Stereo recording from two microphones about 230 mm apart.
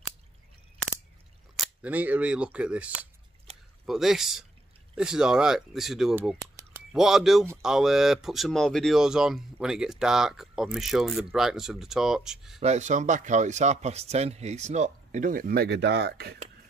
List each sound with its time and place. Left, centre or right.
1.6 s speech: centre
3.5 s a sound: right
3.8 s speech: centre
12.5 s speech: right